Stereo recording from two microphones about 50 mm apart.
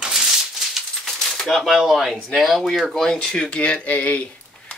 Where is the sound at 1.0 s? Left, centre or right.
Centre.